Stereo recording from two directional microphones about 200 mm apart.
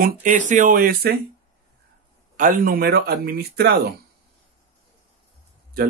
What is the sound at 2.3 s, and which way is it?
Speech, 45° right (ahead or behind).